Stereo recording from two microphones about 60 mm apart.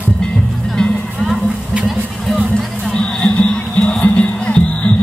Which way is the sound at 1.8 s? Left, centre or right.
Centre.